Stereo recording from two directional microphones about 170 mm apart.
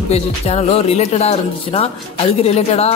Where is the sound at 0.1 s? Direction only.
40° left (ahead or behind).